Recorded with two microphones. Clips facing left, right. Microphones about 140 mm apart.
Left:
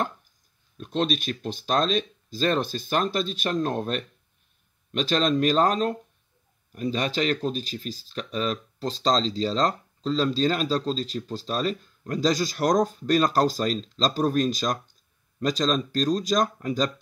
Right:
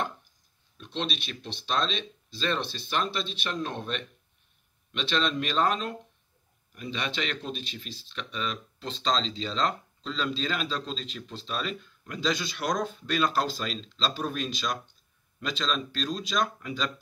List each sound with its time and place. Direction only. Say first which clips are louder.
0.7 s speech: left 8 dB; 45° left (ahead or behind)